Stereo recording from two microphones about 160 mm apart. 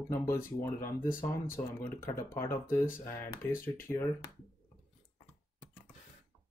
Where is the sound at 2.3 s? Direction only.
15° left (ahead or behind).